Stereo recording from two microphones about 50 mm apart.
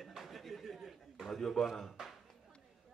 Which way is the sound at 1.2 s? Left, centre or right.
Centre.